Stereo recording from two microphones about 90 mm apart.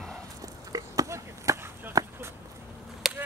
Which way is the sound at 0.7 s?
40° right (ahead or behind).